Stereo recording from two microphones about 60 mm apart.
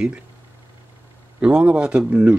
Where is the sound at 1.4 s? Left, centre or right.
Right.